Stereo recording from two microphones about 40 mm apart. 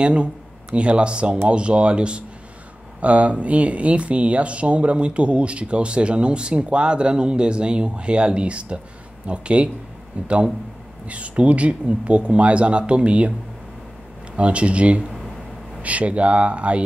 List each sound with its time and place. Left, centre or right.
0.0 s speech: right
14.3 s speech: right